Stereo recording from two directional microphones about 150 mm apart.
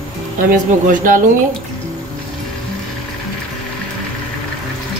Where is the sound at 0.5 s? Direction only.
70° right (ahead or behind).